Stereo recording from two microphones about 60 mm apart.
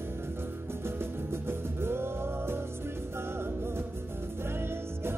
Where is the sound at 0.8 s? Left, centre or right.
Right.